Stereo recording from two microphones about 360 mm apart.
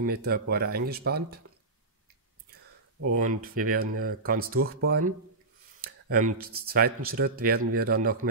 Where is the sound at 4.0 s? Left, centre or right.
Right.